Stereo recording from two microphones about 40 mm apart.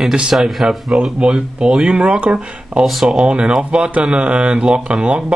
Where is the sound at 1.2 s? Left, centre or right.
Right.